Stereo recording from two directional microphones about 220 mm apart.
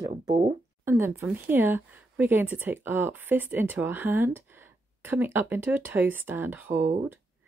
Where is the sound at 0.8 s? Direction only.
10° right (ahead or behind).